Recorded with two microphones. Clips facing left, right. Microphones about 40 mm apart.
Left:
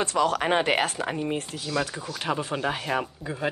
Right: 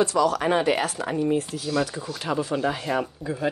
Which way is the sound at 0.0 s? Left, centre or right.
Left.